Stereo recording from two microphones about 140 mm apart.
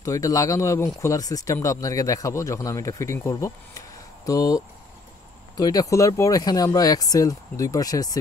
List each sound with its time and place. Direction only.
0.0 s speech: 25° left (ahead or behind)